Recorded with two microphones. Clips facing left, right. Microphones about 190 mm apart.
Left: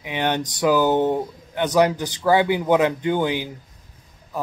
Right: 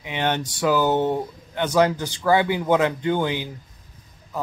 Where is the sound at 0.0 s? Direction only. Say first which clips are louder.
Left 1 dB; 15° left (ahead or behind).